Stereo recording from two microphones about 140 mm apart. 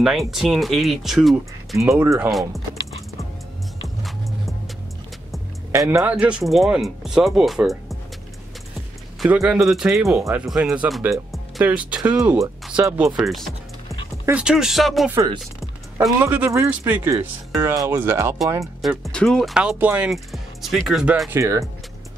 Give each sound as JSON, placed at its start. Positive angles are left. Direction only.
{"t": 0.0, "sound": "speech", "side_deg": 0}
{"t": 1.8, "sound": "speech", "side_deg": -20}
{"t": 2.1, "sound": "speech", "side_deg": -5}
{"t": 5.7, "sound": "speech", "side_deg": -20}
{"t": 6.0, "sound": "speech", "side_deg": -10}
{"t": 9.2, "sound": "speech", "side_deg": -5}
{"t": 12.8, "sound": "speech", "side_deg": -20}
{"t": 13.1, "sound": "speech", "side_deg": 0}
{"t": 16.2, "sound": "speech", "side_deg": -15}
{"t": 18.8, "sound": "speech", "side_deg": 0}
{"t": 21.4, "sound": "speech", "side_deg": -20}